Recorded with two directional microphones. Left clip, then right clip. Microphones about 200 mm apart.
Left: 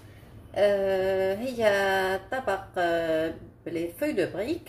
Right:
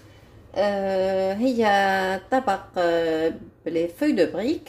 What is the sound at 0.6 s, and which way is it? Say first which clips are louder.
Speech: right 1 dB; 40° right (ahead or behind).